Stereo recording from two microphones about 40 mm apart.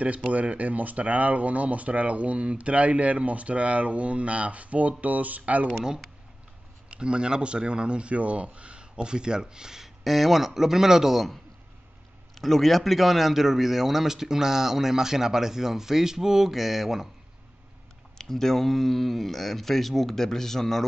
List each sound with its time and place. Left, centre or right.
0.3 s speech: right
6.9 s speech: right
10.0 s speech: centre
12.4 s speech: centre
18.1 s speech: centre